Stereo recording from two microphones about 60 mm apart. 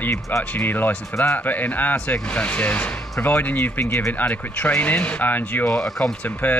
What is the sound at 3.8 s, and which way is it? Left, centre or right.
Speech, left.